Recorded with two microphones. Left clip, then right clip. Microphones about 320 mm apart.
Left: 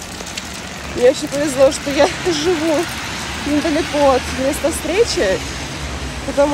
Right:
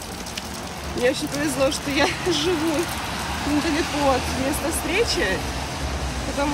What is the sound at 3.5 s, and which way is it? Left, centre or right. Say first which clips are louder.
Speech: left 6 dB; right.